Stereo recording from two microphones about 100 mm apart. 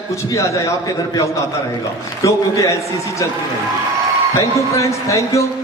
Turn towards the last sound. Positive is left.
turn(degrees=30)  # may be behind; listen again after turning